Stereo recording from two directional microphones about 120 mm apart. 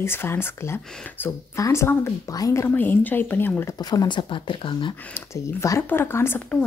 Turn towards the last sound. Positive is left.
turn(degrees=20)  # may be behind; listen again after turning